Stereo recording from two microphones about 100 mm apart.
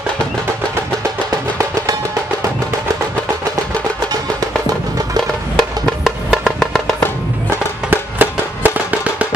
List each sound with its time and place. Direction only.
5.6 s music: centre (ahead or behind)
7.4 s music: 20° right (ahead or behind)